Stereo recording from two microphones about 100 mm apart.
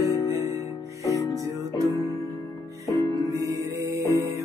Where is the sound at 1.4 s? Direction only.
35° right (ahead or behind).